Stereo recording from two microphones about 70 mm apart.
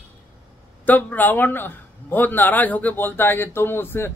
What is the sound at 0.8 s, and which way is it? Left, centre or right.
Speech, left.